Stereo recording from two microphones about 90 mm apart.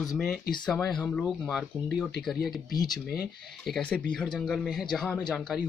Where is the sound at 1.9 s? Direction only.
5° right (ahead or behind).